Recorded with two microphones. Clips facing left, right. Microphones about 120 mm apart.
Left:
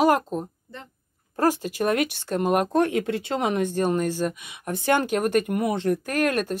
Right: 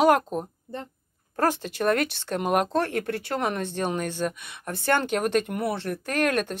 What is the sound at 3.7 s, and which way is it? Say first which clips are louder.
Speech: left 5 dB; 5° left (ahead or behind).